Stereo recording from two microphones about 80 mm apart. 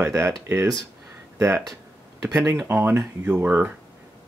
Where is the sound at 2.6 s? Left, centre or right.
Right.